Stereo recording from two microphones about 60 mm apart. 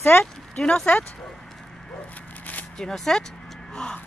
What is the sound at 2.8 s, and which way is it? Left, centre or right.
Speech, centre.